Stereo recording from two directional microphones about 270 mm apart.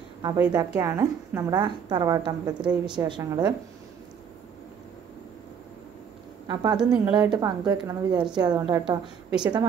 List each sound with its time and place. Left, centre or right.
0.2 s a woman's voice: centre
6.4 s a woman's voice: centre